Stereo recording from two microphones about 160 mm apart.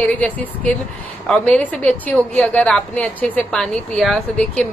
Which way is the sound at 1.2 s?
5° left (ahead or behind).